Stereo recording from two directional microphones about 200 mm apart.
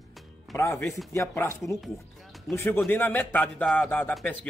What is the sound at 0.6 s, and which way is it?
Speech, 10° left (ahead or behind).